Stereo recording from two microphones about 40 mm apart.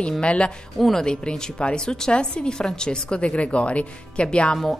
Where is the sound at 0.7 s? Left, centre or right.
Centre.